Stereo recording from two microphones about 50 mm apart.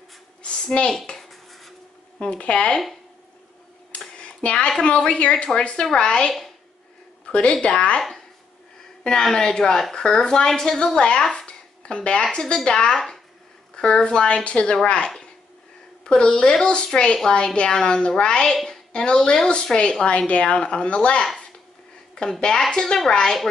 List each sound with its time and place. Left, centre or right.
0.7 s a woman's voice: centre
1.3 s dishes: centre
2.1 s a woman's voice: left
4.2 s a sound: left
4.8 s a woman's voice: centre
9.0 s a woman's voice: centre
16.0 s a woman's voice: centre
22.4 s a woman's voice: centre